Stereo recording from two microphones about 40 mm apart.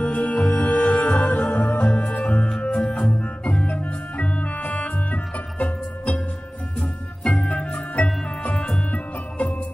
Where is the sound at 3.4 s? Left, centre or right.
Left.